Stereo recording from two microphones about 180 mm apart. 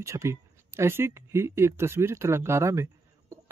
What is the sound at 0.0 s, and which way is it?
Speech, 15° right (ahead or behind).